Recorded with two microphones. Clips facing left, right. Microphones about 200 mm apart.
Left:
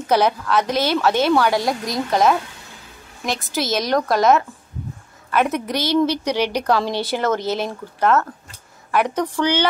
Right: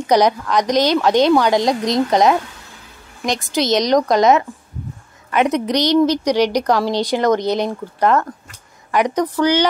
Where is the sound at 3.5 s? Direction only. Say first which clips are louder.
Right 5 dB; 20° right (ahead or behind).